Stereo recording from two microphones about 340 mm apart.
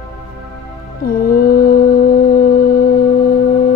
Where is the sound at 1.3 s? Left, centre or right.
Left.